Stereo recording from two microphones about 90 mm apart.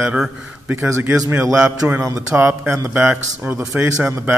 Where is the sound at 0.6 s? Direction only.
20° right (ahead or behind).